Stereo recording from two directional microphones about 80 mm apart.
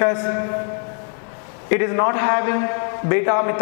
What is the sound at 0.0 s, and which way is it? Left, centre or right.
Speech, centre.